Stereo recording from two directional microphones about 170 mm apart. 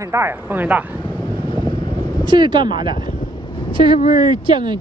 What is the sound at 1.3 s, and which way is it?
Wind noise, 25° left (ahead or behind).